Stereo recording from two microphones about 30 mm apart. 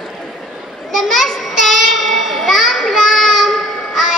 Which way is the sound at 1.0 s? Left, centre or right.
Centre.